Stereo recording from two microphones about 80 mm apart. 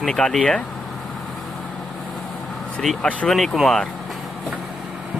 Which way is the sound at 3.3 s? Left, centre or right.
Centre.